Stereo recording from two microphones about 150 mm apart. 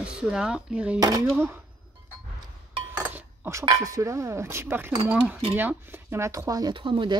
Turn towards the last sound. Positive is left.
turn(degrees=-35)  # may be behind; listen again after turning